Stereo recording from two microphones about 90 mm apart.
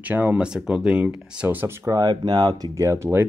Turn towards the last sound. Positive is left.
turn(degrees=-30)  # may be behind; listen again after turning